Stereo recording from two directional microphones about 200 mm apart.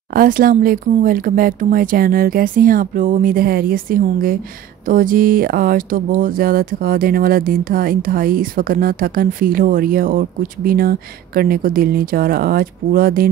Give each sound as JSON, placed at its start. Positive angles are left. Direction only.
{"t": 0.1, "sound": "speech", "side_deg": -45}